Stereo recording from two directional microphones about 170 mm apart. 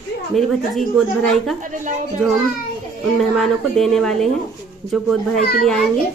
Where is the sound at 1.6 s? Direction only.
50° right (ahead or behind).